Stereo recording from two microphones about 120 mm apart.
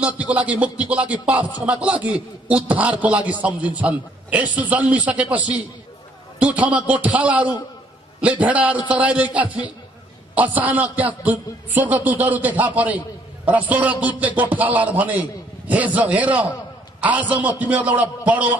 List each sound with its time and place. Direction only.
0.0 s a man's voice: 10° right (ahead or behind)